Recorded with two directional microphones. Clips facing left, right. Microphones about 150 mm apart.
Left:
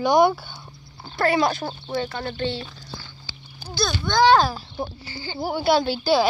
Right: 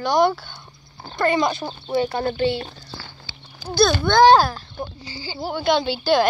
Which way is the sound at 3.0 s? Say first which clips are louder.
Right 2 dB; 80° right.